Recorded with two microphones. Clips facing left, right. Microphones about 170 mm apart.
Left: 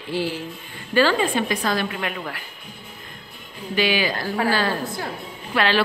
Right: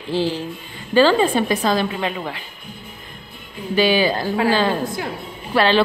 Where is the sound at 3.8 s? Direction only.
30° right (ahead or behind).